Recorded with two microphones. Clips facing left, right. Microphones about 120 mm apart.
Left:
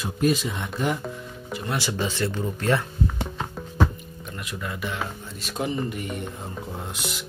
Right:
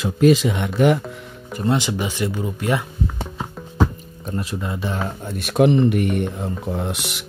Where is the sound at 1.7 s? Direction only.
20° right (ahead or behind).